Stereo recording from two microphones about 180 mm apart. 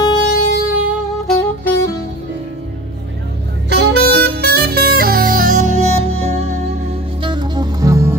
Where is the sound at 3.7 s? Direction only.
65° right (ahead or behind); by 6.8 s 35° right (ahead or behind).